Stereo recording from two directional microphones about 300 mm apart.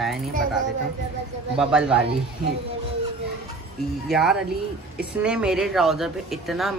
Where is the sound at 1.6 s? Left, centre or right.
Centre.